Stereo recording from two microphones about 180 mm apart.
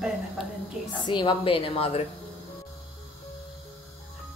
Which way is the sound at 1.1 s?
25° left (ahead or behind).